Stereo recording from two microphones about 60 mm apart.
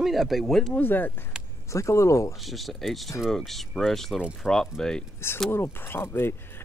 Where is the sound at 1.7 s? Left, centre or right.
Left.